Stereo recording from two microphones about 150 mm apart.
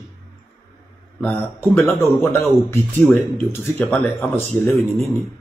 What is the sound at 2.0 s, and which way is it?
Speech, 15° left (ahead or behind).